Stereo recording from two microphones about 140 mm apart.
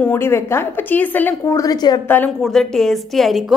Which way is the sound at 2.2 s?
Centre (ahead or behind).